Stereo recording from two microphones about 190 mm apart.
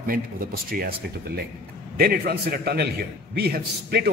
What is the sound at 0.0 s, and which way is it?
A man's voice, 50° right (ahead or behind).